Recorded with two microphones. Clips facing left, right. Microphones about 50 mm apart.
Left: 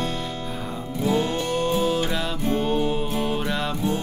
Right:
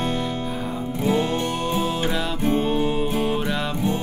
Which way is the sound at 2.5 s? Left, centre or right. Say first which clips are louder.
Even; centre.